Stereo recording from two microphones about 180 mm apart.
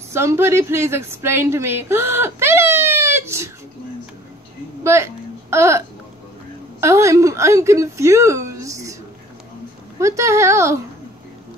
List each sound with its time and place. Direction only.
0.1 s a woman's voice: 15° right (ahead or behind)
4.8 s a sound: 15° right (ahead or behind)
6.8 s a woman's voice: 15° right (ahead or behind)
9.9 s speech: 15° right (ahead or behind)